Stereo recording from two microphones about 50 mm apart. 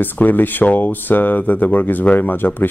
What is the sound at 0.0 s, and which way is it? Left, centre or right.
Speech, left.